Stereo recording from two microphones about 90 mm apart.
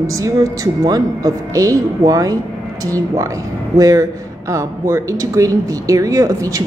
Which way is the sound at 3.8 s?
35° right (ahead or behind).